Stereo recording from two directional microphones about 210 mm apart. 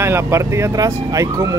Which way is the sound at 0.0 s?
10° right (ahead or behind).